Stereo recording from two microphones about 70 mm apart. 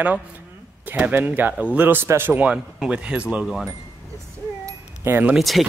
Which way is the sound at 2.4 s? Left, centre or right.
Centre.